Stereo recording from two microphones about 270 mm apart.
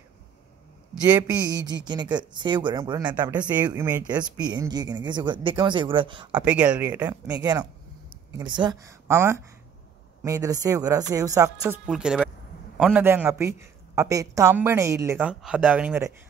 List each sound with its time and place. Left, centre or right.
1.0 s a man's voice: centre
6.4 s a man's voice: centre